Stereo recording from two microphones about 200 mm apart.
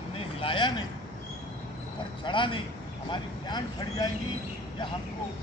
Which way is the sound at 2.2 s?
25° left (ahead or behind).